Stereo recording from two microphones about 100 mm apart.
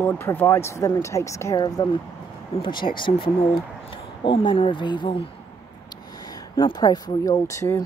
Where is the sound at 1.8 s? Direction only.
50° left (ahead or behind).